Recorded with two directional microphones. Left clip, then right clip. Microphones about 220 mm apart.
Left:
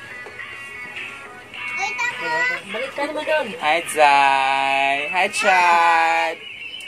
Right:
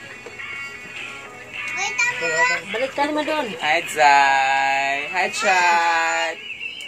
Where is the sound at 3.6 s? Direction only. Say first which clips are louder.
Even; 25° left (ahead or behind).